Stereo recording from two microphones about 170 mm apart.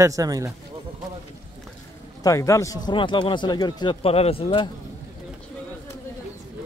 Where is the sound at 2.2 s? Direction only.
20° left (ahead or behind).